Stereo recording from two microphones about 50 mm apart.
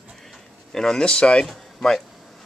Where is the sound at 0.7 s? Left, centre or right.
Centre.